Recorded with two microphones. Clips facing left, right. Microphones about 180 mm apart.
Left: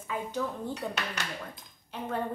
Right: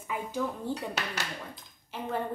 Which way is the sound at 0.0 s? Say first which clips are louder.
Even; 10° right (ahead or behind).